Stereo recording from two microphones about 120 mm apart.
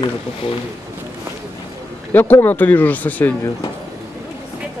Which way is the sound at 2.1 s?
15° left (ahead or behind).